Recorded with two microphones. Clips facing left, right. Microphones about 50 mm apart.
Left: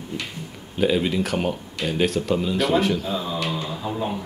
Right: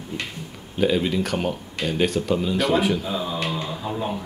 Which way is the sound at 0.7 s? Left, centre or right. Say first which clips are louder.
Even; centre.